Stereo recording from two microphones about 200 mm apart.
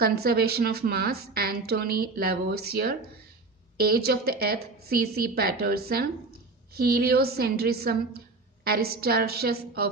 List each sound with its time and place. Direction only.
0.0 s a woman's voice: 50° right (ahead or behind)
4.0 s a woman's voice: 50° right (ahead or behind)